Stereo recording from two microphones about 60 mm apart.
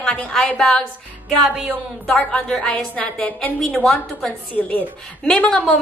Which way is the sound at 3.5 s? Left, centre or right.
Centre.